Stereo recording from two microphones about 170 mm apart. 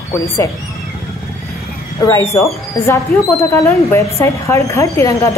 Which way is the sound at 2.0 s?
15° left (ahead or behind).